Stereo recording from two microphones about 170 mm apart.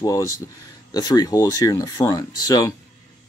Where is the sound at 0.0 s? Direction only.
20° left (ahead or behind).